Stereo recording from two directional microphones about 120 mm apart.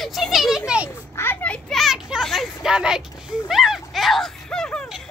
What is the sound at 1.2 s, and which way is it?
Children playing, 15° left (ahead or behind).